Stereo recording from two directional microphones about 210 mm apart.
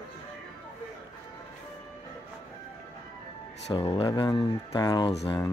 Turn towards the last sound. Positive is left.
turn(degrees=20)  # may be behind; listen again after turning